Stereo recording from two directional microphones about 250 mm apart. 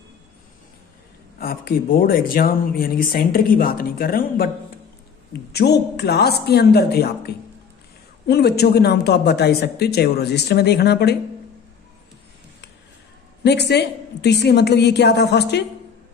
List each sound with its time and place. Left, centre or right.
1.4 s speech: left
5.5 s speech: left
13.4 s speech: left